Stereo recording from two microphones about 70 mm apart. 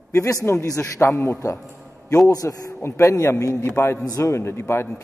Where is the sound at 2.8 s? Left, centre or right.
Left.